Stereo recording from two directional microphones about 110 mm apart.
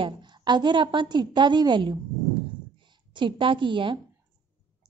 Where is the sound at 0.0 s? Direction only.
45° right (ahead or behind).